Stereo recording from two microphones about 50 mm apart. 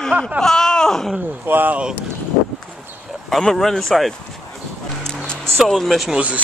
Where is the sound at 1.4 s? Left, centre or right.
Right.